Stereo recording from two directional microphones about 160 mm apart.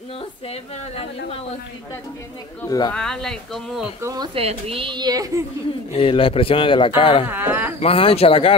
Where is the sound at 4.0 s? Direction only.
25° right (ahead or behind).